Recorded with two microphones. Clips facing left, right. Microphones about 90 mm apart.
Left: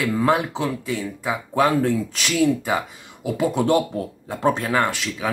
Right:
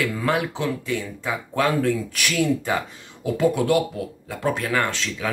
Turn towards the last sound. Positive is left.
turn(degrees=15)  # may be behind; listen again after turning